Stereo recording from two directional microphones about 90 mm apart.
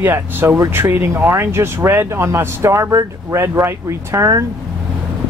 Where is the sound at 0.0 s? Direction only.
25° right (ahead or behind).